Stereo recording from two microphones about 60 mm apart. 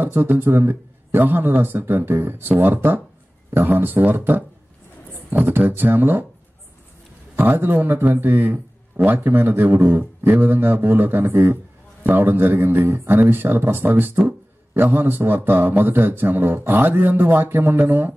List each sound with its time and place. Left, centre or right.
0.0 s a man's voice: right
7.3 s a man's voice: right